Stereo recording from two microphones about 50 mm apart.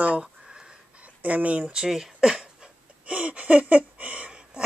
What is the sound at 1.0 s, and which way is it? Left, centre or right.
Speech, right.